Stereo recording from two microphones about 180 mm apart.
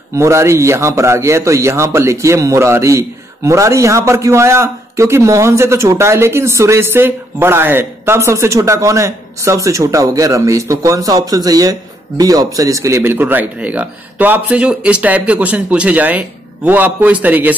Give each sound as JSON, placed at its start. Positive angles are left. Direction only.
{"t": 0.1, "sound": "a man's voice", "side_deg": -15}